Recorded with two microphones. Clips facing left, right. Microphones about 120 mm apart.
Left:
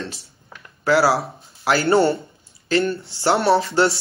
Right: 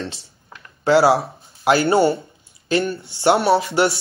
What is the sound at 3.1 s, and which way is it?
Speech, 20° right (ahead or behind).